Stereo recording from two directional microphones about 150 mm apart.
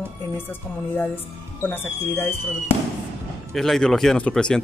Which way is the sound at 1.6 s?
15° left (ahead or behind).